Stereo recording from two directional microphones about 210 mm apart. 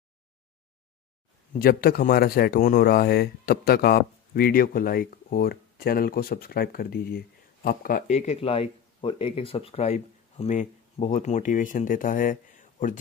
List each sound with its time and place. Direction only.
1.5 s speech: 45° left (ahead or behind)